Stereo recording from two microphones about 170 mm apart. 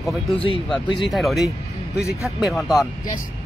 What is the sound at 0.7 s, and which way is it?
Speech, centre (ahead or behind).